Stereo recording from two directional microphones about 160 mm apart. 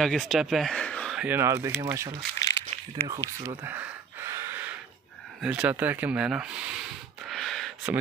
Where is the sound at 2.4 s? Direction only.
20° left (ahead or behind).